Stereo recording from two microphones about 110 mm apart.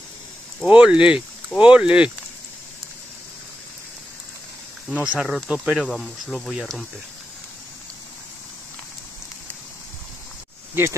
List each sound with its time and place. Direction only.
0.7 s speech: 10° right (ahead or behind)
4.9 s speech: 15° right (ahead or behind)
10.7 s speech: 20° right (ahead or behind)